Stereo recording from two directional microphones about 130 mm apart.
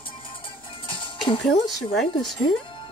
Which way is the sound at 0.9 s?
40° left (ahead or behind).